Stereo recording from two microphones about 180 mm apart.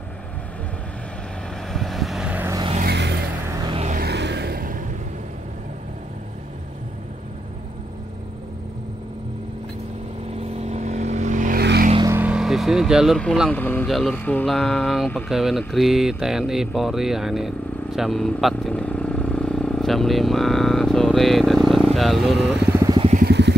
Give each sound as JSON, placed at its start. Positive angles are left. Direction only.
{"t": 1.7, "sound": "vehicle", "side_deg": 0}
{"t": 2.8, "sound": "vehicle", "side_deg": -65}
{"t": 3.4, "sound": "music", "side_deg": -20}
{"t": 3.7, "sound": "music", "side_deg": -40}
{"t": 4.0, "sound": "a sound", "side_deg": -70}
{"t": 10.6, "sound": "vehicle", "side_deg": -40}
{"t": 12.0, "sound": "speech", "side_deg": -10}
{"t": 23.2, "sound": "vehicle", "side_deg": -70}